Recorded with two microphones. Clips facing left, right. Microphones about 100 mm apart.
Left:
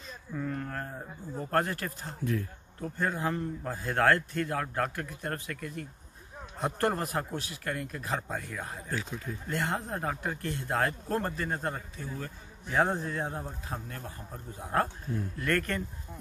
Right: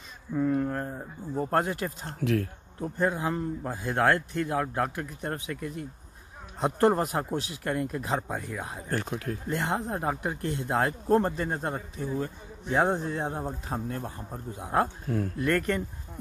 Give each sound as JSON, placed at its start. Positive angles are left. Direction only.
{"t": 0.5, "sound": "a man's voice", "side_deg": -15}
{"t": 2.2, "sound": "speech", "side_deg": -90}
{"t": 2.8, "sound": "a man's voice", "side_deg": -20}
{"t": 8.9, "sound": "speech", "side_deg": -60}
{"t": 9.5, "sound": "speech", "side_deg": -20}
{"t": 14.7, "sound": "a man's voice", "side_deg": -15}
{"t": 15.0, "sound": "speech", "side_deg": -90}
{"t": 15.3, "sound": "speech", "side_deg": -20}